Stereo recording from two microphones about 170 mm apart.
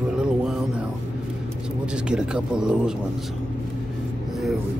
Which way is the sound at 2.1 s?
5° right (ahead or behind).